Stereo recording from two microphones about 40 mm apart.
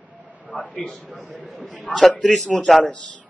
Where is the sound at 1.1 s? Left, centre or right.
Right.